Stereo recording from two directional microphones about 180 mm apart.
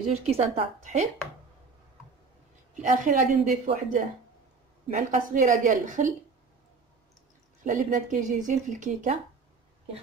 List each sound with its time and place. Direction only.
0.3 s a woman's voice: 35° right (ahead or behind)
2.7 s speech: 45° right (ahead or behind)
7.6 s speech: 45° right (ahead or behind)